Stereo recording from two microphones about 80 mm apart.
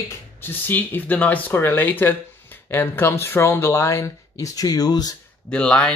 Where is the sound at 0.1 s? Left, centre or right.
Left.